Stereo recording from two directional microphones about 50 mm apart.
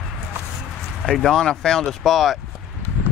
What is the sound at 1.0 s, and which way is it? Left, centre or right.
Speech, centre.